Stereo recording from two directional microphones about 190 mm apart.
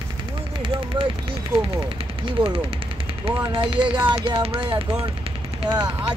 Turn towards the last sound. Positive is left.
turn(degrees=-20)  # may be behind; listen again after turning